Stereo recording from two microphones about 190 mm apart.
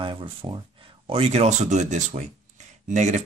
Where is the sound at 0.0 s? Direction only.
25° right (ahead or behind).